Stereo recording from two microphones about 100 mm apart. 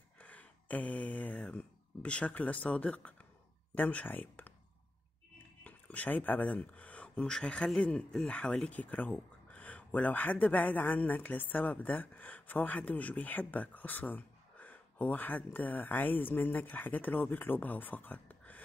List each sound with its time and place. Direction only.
0.2 s speech: 15° left (ahead or behind)
5.6 s speech: 15° left (ahead or behind)